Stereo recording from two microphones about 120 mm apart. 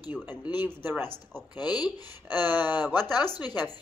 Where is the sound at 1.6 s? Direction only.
35° left (ahead or behind).